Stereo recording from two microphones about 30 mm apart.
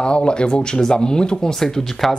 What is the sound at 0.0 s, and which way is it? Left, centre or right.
Speech, left.